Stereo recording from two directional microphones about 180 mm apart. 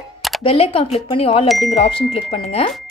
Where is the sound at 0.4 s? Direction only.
30° left (ahead or behind).